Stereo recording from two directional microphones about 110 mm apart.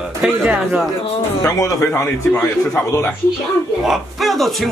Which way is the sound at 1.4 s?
30° left (ahead or behind).